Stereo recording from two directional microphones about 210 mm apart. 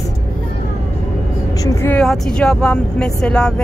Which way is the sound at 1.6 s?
10° left (ahead or behind).